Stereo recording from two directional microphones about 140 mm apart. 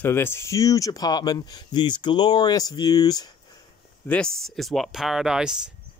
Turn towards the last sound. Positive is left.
turn(degrees=-5)  # may be behind; listen again after turning